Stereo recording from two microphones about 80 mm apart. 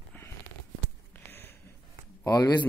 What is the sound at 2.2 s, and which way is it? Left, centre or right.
Speech, left.